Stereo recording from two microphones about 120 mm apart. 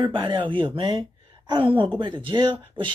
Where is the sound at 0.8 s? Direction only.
35° right (ahead or behind).